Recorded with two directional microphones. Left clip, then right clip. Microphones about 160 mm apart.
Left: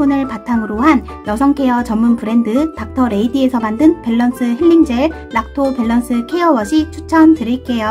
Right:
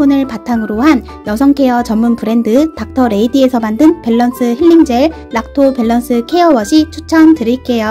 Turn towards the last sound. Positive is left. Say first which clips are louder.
# right 5 dB
turn(degrees=-20)  # may be behind; listen again after turning